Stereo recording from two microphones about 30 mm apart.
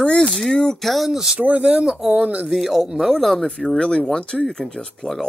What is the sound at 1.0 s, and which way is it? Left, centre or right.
Speech, centre.